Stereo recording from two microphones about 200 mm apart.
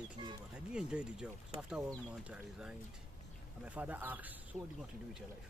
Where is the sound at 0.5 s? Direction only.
5° right (ahead or behind).